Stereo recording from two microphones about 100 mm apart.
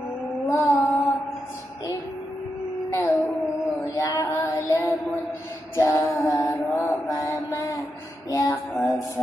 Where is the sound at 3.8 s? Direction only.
35° left (ahead or behind).